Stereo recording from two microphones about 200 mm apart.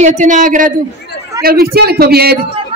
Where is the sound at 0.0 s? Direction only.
35° right (ahead or behind).